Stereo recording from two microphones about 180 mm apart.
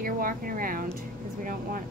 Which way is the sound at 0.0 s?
50° right (ahead or behind).